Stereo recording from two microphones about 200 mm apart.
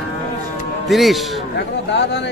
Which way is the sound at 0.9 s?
Centre (ahead or behind).